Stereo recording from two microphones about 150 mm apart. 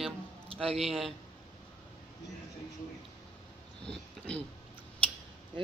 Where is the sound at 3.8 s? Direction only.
5° left (ahead or behind).